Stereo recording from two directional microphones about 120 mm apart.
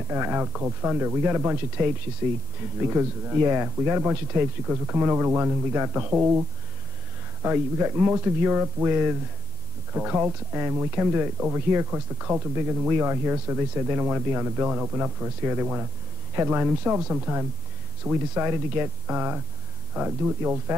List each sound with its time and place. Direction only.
0.1 s speech: 15° right (ahead or behind)
2.9 s speech: 15° right (ahead or behind)
7.4 s speech: 15° right (ahead or behind)